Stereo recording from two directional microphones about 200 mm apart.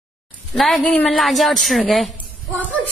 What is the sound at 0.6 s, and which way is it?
A woman's voice, centre (ahead or behind).